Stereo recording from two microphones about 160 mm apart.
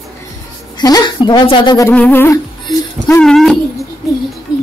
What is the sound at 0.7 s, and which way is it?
A woman's voice, 25° left (ahead or behind).